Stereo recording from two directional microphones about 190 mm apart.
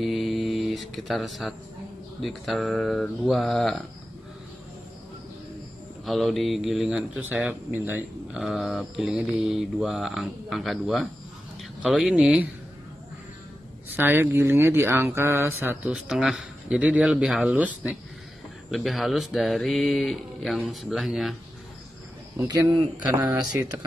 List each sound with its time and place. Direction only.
0.0 s mantra: centre (ahead or behind)
2.2 s speech: centre (ahead or behind)
6.0 s speech: centre (ahead or behind)
13.8 s speech: 10° right (ahead or behind)
22.4 s speech: 15° right (ahead or behind)